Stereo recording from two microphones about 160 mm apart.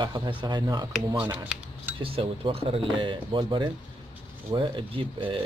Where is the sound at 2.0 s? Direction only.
35° right (ahead or behind).